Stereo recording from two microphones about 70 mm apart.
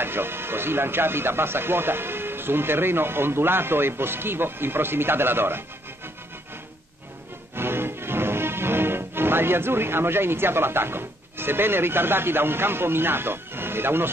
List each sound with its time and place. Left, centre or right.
0.0 s speech: right
7.5 s music: right